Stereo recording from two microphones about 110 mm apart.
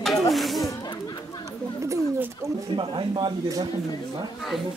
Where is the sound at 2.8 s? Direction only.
45° right (ahead or behind).